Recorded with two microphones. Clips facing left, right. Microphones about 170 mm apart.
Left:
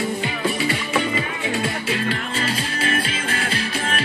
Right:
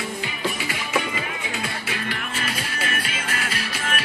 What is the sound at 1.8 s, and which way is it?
Music, 30° left (ahead or behind).